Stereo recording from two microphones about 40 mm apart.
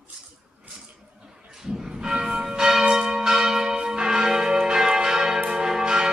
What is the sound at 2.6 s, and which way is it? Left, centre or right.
Church bell, centre.